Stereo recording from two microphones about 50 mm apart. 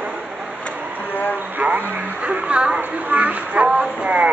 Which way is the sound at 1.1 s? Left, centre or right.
Left.